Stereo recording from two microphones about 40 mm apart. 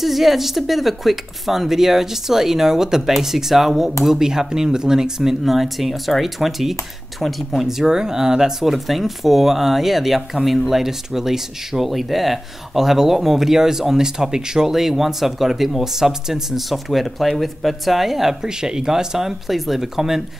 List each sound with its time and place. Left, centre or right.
0.0 s speech: centre
5.4 s speech: centre
7.6 s speech: centre
18.4 s speech: centre